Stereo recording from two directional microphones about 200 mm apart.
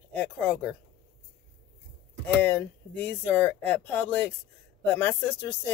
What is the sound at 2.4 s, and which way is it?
Speech, 10° left (ahead or behind).